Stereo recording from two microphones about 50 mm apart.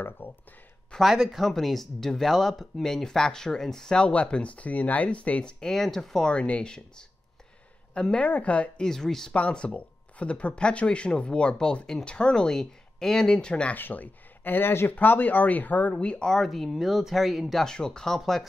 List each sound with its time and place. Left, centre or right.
0.2 s a sound: left
1.0 s speech: centre
1.4 s speech: centre
2.8 s speech: centre; by 5.4 s left
5.4 s speech: centre
6.3 s speech: left
8.8 s speech: centre
9.3 s speech: left
13.7 s speech: left
15.0 s speech: left
16.0 s speech: centre
17.6 s speech: centre